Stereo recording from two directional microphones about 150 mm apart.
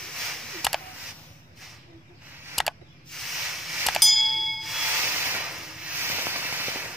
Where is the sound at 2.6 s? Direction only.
Centre (ahead or behind).